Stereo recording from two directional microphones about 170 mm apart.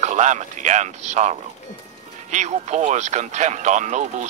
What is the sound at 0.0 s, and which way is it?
Speech, 45° right (ahead or behind).